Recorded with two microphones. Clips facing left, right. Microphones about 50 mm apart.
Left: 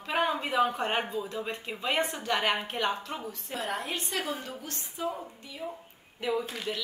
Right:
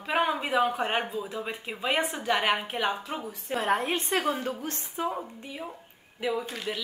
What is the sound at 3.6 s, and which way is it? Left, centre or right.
Speech, right.